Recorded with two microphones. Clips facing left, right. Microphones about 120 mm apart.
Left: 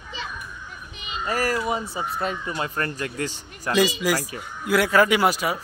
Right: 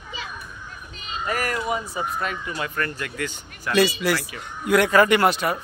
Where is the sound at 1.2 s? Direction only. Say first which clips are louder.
Left 2 dB; 30° left (ahead or behind).